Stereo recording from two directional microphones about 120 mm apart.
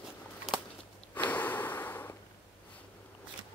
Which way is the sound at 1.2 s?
15° left (ahead or behind).